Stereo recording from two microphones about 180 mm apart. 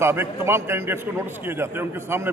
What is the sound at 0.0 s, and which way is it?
A man's voice, 15° right (ahead or behind).